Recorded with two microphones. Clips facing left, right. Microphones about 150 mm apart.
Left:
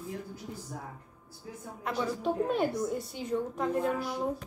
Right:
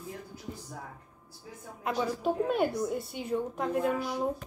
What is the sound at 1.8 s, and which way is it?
A woman's voice, 5° right (ahead or behind).